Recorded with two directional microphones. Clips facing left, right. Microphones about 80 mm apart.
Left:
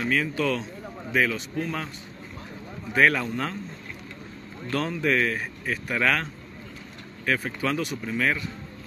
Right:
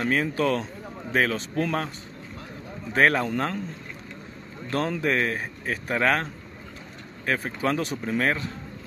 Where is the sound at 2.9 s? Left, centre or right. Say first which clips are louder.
Right 1 dB; right.